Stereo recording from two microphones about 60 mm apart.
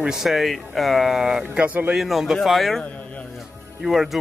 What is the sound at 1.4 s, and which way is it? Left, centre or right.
Speech, centre.